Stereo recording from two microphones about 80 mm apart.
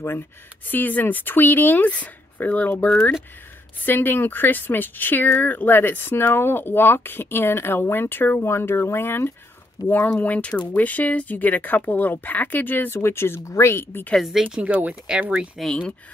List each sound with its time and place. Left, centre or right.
0.7 s speech: left
10.0 s speech: centre
14.1 s speech: centre
14.6 s speech: centre